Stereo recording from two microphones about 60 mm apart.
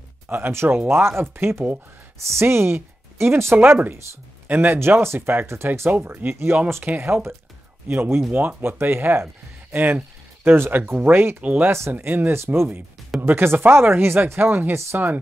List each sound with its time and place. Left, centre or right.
0.3 s speech: right
5.9 s speech: right
6.3 s speech: right
6.8 s speech: right